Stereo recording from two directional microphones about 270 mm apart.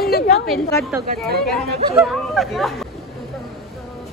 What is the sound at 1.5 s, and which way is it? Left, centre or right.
Speech, centre.